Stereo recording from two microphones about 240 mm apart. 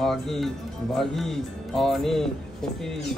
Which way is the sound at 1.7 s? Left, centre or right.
Centre.